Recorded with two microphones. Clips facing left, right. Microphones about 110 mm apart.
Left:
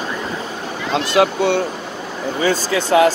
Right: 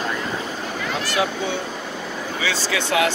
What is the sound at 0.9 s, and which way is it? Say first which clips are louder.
Speech: left 9 dB; 70° left (ahead or behind).